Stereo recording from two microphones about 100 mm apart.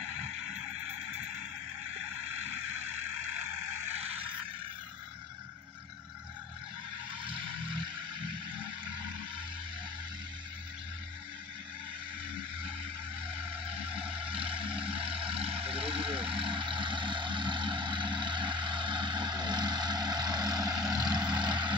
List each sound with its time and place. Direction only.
0.0 s vehicle: 90° right
2.2 s vehicle: 90° right
7.1 s vehicle: 60° right (ahead or behind)
13.3 s vehicle: 65° right (ahead or behind); by 21.7 s 50° right (ahead or behind)